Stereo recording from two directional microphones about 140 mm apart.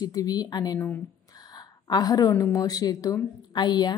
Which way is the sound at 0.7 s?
15° left (ahead or behind).